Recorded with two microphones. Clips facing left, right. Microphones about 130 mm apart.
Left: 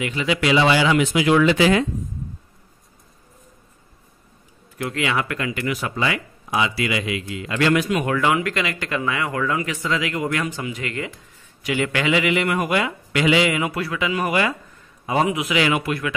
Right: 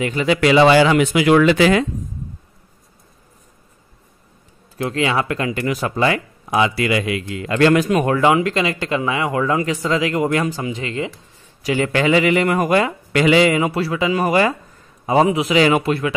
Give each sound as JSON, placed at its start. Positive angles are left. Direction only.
{"t": 0.0, "sound": "speech", "side_deg": -45}
{"t": 4.8, "sound": "speech", "side_deg": -30}
{"t": 8.2, "sound": "speech", "side_deg": -25}